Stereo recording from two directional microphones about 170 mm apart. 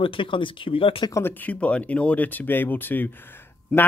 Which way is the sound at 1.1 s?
15° left (ahead or behind).